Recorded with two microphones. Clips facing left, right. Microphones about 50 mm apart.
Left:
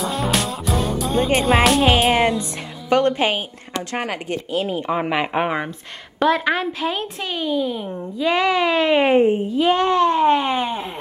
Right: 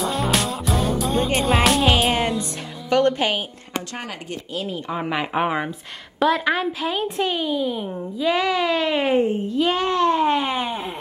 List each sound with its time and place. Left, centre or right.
0.0 s music: centre
3.0 s speech: centre
3.9 s a child's voice: left; by 10.9 s centre